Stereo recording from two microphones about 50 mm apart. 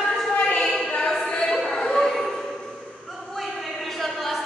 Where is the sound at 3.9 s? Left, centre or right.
Centre.